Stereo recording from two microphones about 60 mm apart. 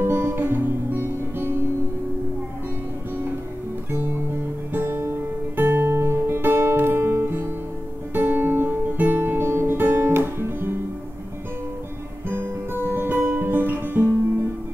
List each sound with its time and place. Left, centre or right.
0.0 s music: right
4.7 s music: right
5.6 s guitar: right
12.3 s music: right